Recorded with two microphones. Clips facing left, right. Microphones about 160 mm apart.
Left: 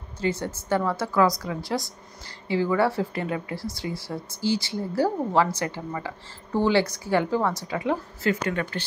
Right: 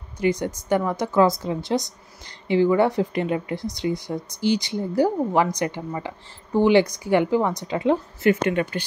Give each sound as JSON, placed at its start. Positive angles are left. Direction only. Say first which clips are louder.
{"t": 0.2, "sound": "a woman's voice", "louder": "right 5 dB", "side_deg": -15}